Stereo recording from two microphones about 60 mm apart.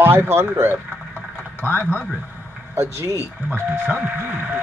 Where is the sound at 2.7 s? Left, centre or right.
Right.